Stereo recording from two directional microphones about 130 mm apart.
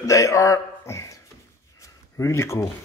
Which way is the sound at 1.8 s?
25° left (ahead or behind).